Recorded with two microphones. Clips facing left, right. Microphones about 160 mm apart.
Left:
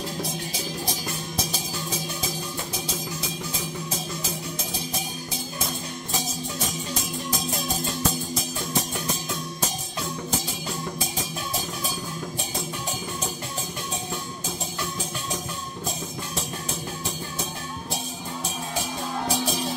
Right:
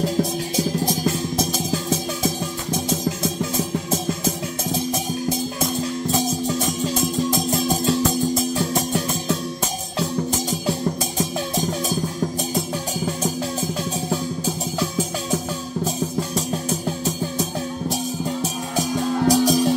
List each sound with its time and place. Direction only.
1.4 s music: 45° right (ahead or behind)
7.6 s music: 90° right
18.8 s music: 40° right (ahead or behind)